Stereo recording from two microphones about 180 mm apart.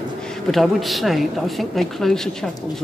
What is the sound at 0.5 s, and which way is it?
A woman's voice, centre (ahead or behind).